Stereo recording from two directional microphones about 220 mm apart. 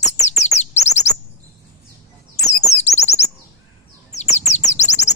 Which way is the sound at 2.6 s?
30° left (ahead or behind).